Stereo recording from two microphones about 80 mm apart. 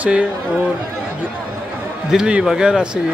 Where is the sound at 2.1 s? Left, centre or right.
Centre.